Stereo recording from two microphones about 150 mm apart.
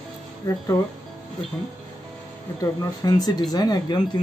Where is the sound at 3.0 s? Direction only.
25° left (ahead or behind).